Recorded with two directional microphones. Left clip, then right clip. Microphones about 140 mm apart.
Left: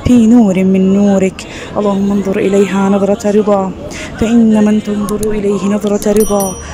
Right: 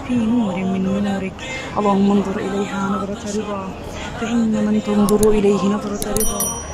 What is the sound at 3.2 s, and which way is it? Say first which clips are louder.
Speech: left 14 dB; 40° left (ahead or behind).